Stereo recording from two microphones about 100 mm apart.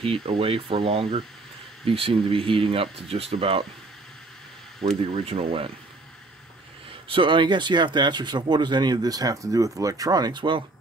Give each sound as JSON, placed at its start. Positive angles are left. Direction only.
{"t": 0.0, "sound": "speech", "side_deg": -60}
{"t": 5.1, "sound": "speech", "side_deg": -75}
{"t": 7.1, "sound": "speech", "side_deg": -55}